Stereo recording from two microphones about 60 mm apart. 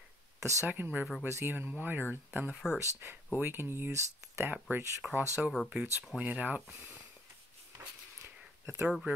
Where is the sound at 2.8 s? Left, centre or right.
Right.